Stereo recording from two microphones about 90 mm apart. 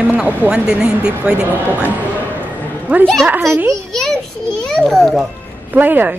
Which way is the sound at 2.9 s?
20° right (ahead or behind).